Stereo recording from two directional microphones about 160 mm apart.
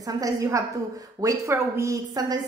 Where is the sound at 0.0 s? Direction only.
20° right (ahead or behind).